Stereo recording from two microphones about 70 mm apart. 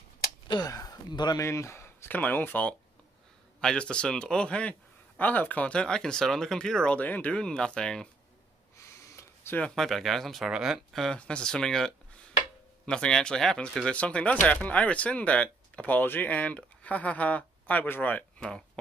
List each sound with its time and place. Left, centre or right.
0.7 s speech: left
1.4 s speech: left
2.0 s speech: left
3.6 s speech: centre
7.0 s speech: left
7.3 s speech: centre
8.7 s a sound: left
9.8 s speech: centre
11.1 s speech: centre